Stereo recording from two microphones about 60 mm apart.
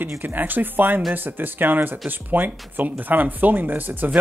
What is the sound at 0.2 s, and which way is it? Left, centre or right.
Speech, right.